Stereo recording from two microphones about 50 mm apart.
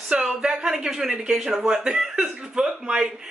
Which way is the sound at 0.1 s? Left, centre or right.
Centre.